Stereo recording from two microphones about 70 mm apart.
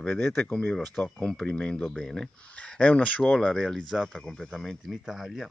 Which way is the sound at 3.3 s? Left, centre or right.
Centre.